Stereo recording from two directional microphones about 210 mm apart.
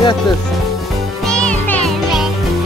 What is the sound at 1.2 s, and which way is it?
Music, 5° left (ahead or behind).